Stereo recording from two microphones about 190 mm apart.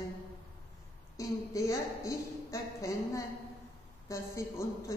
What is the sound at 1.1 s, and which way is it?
A woman's voice, 15° left (ahead or behind).